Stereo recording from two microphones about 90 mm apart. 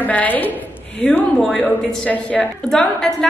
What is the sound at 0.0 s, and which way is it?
Speech, 20° left (ahead or behind).